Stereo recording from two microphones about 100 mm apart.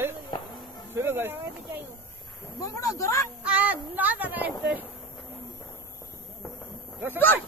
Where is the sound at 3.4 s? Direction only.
15° right (ahead or behind).